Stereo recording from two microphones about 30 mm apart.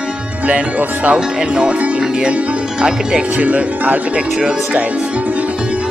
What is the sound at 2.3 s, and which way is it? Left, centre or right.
Speech, right.